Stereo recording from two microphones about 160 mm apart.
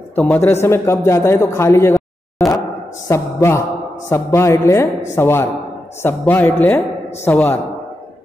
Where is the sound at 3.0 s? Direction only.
15° left (ahead or behind).